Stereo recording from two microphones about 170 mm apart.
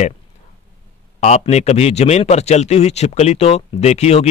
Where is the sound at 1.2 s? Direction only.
40° left (ahead or behind).